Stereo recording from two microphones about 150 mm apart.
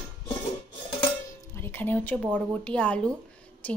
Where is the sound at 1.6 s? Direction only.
15° left (ahead or behind).